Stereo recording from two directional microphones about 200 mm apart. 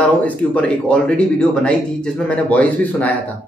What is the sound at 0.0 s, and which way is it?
A man's voice, 5° left (ahead or behind).